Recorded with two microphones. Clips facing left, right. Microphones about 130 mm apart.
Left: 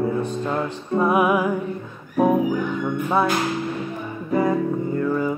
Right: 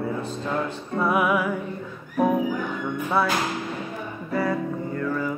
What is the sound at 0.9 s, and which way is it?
Music, 20° left (ahead or behind).